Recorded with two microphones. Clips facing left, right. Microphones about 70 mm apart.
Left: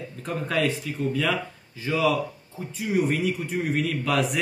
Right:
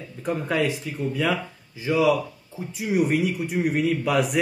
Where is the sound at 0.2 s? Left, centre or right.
Centre.